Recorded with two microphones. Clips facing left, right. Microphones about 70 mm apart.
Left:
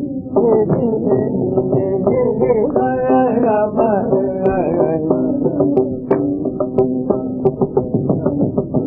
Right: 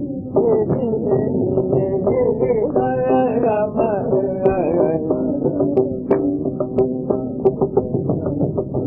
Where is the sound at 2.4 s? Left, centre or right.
Left.